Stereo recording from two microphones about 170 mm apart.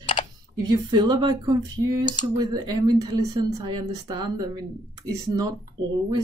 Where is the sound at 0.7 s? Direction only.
25° right (ahead or behind).